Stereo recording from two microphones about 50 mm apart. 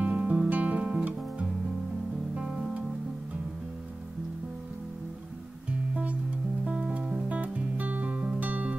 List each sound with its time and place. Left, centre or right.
0.0 s music: right
2.3 s music: centre
5.7 s music: right